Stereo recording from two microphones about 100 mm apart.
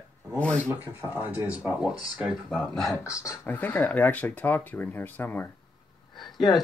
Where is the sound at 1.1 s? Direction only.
15° right (ahead or behind).